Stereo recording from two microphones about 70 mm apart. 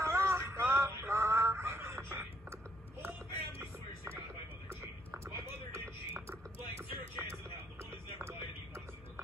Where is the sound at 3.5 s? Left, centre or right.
Right.